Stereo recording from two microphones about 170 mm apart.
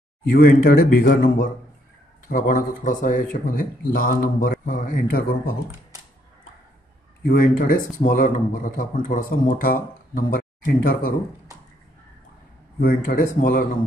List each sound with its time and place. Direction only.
0.3 s speech: 60° left (ahead or behind)
7.2 s speech: 55° left (ahead or behind)
12.8 s speech: 55° left (ahead or behind)